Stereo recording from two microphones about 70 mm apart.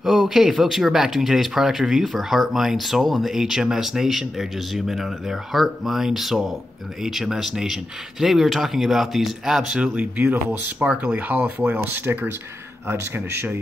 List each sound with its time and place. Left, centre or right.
0.0 s a man's voice: centre; by 13.6 s right